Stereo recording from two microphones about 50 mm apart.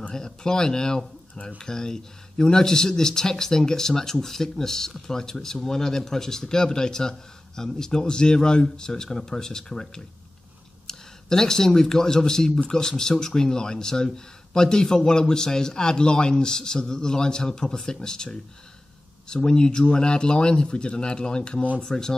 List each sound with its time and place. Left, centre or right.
0.1 s speech: centre